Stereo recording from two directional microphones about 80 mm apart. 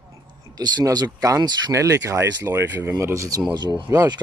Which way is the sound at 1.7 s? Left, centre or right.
Right.